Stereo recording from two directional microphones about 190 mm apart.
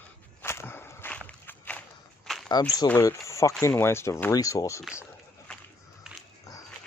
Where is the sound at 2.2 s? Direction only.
Centre (ahead or behind).